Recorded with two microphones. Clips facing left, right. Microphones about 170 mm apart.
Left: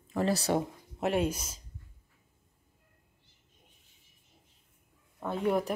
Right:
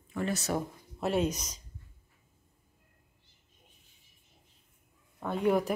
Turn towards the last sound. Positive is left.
turn(degrees=0)  # may be behind; listen again after turning